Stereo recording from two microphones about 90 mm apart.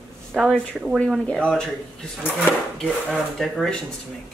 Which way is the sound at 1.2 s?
10° left (ahead or behind).